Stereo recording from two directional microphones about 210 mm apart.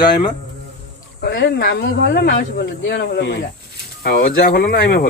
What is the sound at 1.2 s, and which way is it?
Speech, 50° left (ahead or behind).